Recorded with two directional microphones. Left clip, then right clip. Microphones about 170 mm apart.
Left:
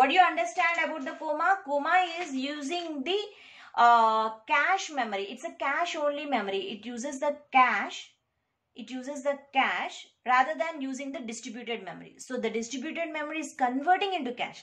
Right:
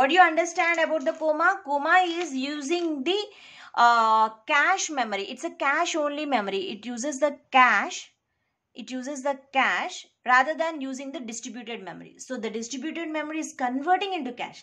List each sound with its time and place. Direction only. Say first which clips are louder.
0.0 s a woman's voice: right 3 dB; 30° right (ahead or behind); by 14.5 s 5° right (ahead or behind)